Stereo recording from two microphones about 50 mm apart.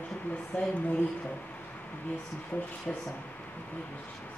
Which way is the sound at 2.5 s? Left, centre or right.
Left.